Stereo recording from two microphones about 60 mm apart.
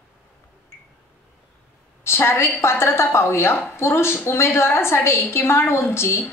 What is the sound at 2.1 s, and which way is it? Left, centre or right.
A woman's voice, left.